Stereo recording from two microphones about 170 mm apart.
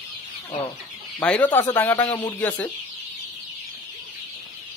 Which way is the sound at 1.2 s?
10° left (ahead or behind).